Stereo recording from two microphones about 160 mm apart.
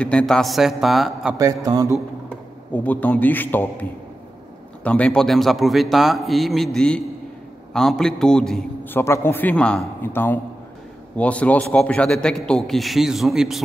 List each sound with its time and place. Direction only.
0.0 s a man's voice: 5° left (ahead or behind)
1.4 s a man's voice: 20° right (ahead or behind)
2.7 s a man's voice: 10° left (ahead or behind)
4.8 s a man's voice: 5° left (ahead or behind)
8.9 s a man's voice: 15° left (ahead or behind); by 13.6 s centre (ahead or behind)